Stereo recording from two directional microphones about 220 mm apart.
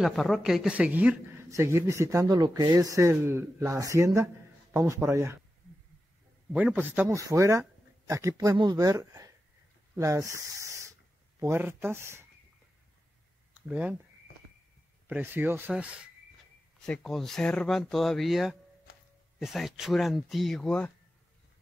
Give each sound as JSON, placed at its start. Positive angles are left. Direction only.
{"t": 0.0, "sound": "speech", "side_deg": 0}
{"t": 6.5, "sound": "speech", "side_deg": -10}
{"t": 13.6, "sound": "speech", "side_deg": -5}
{"t": 15.0, "sound": "speech", "side_deg": -5}